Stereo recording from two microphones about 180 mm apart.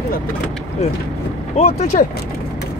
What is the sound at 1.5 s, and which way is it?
Speech, 35° left (ahead or behind).